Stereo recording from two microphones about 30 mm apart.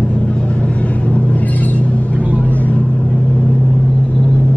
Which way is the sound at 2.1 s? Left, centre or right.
Right.